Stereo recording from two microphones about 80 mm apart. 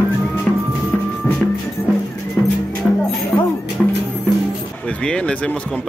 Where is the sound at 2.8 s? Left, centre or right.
Centre.